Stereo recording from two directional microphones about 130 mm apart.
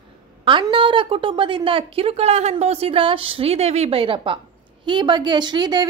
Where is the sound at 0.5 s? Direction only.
40° right (ahead or behind).